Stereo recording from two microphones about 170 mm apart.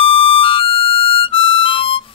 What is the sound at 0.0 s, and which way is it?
Harmonica, 35° left (ahead or behind).